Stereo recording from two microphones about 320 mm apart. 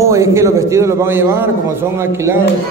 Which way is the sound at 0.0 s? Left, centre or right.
Centre.